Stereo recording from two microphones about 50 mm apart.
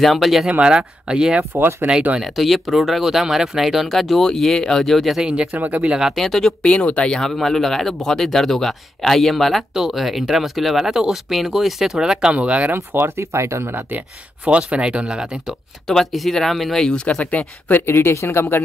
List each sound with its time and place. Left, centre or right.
0.0 s speech: centre
0.5 s speech: centre
2.1 s speech: centre
5.2 s speech: right
6.1 s speech: centre
6.6 s speech: left; by 12.4 s centre
12.4 s speech: right
12.7 s speech: right
13.2 s speech: right
13.7 s speech: right
15.9 s speech: centre
16.8 s speech: centre; by 17.9 s left
18.1 s speech: left